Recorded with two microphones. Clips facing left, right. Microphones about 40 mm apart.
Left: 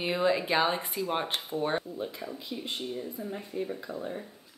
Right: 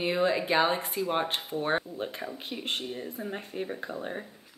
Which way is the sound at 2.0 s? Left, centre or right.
Right.